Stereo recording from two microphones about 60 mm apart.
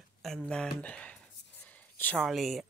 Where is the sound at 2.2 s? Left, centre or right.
Centre.